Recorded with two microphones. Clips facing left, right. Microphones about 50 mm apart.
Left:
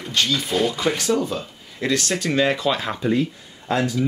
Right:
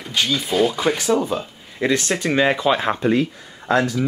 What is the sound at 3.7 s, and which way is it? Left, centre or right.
Speech, right.